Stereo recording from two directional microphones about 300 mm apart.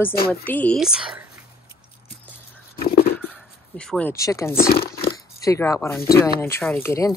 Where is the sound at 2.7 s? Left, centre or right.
Left.